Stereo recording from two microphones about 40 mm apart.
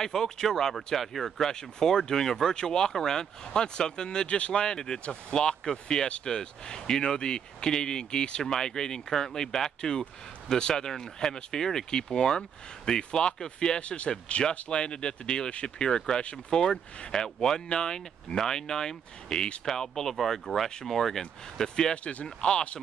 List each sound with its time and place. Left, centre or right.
0.0 s speech: centre
13.7 s speech: left
21.9 s speech: left